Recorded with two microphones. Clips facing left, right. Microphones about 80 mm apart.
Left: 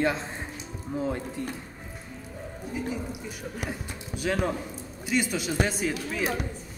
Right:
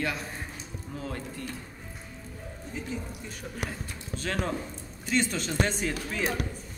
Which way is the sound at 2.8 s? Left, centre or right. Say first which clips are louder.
Left 4 dB; centre.